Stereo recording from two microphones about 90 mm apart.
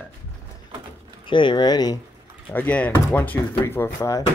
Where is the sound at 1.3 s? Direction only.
60° left (ahead or behind).